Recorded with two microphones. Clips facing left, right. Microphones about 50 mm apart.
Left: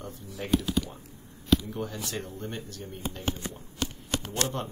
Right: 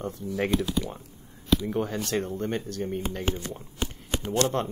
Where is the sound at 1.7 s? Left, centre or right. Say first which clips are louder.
Right 7 dB; right.